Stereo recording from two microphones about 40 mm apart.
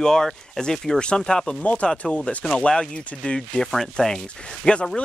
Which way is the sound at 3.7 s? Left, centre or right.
Centre.